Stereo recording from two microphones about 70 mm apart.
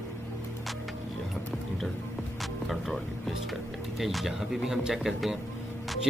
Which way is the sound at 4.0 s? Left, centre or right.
Centre.